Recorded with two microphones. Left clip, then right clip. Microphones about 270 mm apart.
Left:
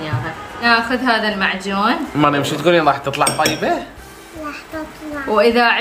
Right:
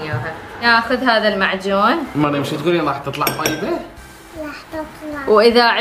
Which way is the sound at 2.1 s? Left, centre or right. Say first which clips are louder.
Left 3 dB; centre.